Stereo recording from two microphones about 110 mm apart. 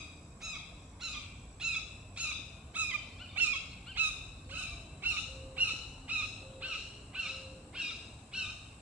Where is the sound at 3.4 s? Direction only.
15° right (ahead or behind).